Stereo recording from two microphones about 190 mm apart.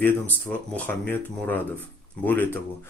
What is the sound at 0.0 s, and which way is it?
Speech, 10° left (ahead or behind).